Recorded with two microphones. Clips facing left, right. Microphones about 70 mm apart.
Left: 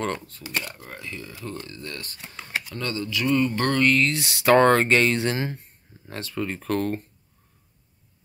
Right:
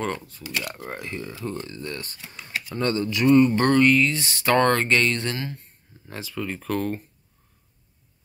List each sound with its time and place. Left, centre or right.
0.0 s speech: centre
0.4 s speech: left
0.7 s speech: right
2.2 s a sound: left
2.8 s speech: right; by 4.0 s centre
4.0 s speech: centre
5.3 s speech: left
6.0 s speech: centre